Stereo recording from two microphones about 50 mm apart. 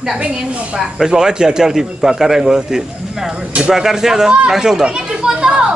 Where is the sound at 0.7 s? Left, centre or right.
Centre.